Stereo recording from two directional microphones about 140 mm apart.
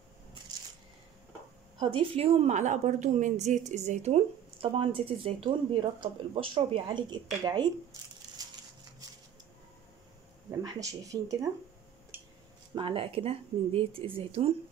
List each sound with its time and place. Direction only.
1.8 s a woman's voice: 40° right (ahead or behind)
8.4 s a sound: 25° right (ahead or behind)
10.6 s speech: 25° right (ahead or behind)
12.7 s a woman's voice: 40° right (ahead or behind)